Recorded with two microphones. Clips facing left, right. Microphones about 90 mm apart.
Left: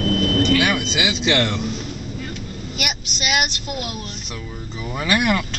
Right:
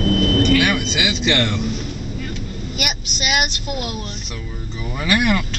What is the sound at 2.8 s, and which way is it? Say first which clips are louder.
Vehicle: even; 10° right (ahead or behind).